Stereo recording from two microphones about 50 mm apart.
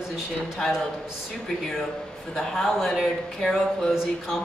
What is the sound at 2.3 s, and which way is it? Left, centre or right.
Speech, centre.